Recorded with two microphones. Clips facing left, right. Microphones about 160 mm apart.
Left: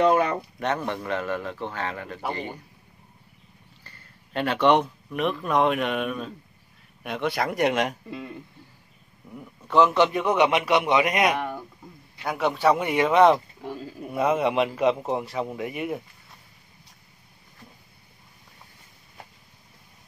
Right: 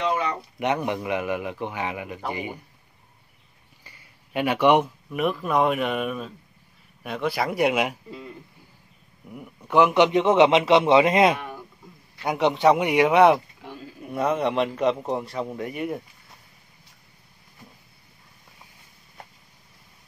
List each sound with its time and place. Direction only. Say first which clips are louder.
0.0 s speech: left 5 dB; 55° left (ahead or behind)
0.6 s a man's voice: right 5 dB; 15° right (ahead or behind)
3.8 s a man's voice: right 2 dB; 10° right (ahead or behind)
9.3 s a man's voice: right 1 dB; 10° right (ahead or behind)
14.1 s a man's voice: left 1 dB; 5° left (ahead or behind)